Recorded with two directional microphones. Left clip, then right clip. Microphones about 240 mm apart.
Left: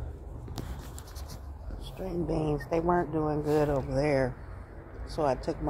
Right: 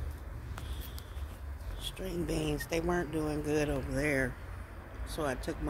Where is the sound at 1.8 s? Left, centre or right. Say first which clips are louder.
Left 3 dB; centre.